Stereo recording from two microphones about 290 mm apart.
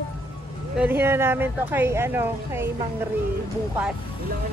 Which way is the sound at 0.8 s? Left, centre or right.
Centre.